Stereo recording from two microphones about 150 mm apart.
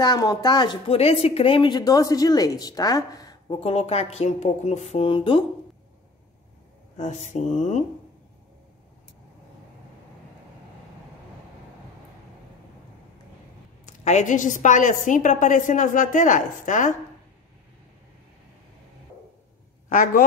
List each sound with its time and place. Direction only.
0.0 s speech: 25° left (ahead or behind)
0.8 s speech: 40° left (ahead or behind); by 3.5 s 25° left (ahead or behind)
3.5 s speech: 40° left (ahead or behind)
7.0 s speech: 50° left (ahead or behind)
13.8 s a woman's voice: 50° left (ahead or behind)
19.9 s a woman's voice: 65° left (ahead or behind)